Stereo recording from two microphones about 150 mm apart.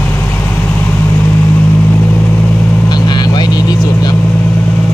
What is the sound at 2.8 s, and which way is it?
Vehicle, 30° left (ahead or behind).